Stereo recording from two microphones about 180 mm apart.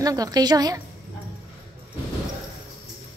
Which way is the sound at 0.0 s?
20° right (ahead or behind).